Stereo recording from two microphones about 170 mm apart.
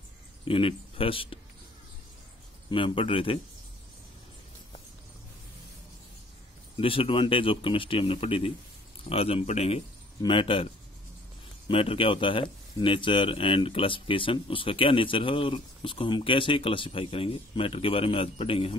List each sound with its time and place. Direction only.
0.5 s speech: 30° left (ahead or behind)
2.7 s speech: 30° left (ahead or behind)
6.8 s speech: 30° left (ahead or behind)